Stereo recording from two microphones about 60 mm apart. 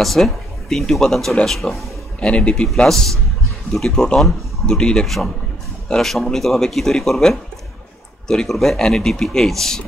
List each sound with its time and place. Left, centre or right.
0.0 s speech: centre
2.1 s speech: centre